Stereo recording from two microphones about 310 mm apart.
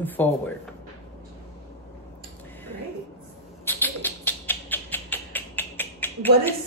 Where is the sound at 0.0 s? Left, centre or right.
Centre.